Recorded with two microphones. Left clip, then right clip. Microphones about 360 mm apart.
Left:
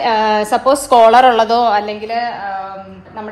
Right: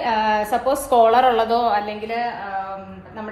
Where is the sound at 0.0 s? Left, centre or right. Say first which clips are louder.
Left 6 dB; left.